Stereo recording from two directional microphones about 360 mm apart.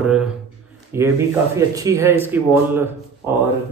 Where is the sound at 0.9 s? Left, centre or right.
Centre.